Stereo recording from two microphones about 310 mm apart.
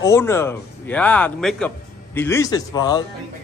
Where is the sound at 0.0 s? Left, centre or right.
Centre.